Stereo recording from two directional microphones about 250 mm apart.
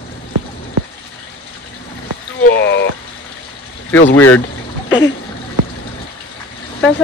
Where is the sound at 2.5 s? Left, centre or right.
Left.